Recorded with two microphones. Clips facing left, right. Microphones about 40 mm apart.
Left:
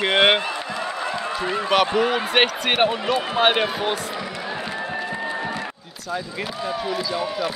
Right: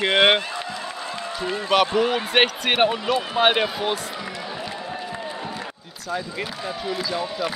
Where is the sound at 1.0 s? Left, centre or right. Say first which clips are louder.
Left 1 dB; left.